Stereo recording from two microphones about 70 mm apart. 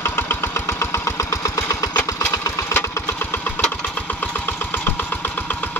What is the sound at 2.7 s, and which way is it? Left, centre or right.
Engine, left.